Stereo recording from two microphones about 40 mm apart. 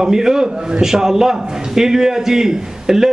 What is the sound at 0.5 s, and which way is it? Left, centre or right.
Speech, right.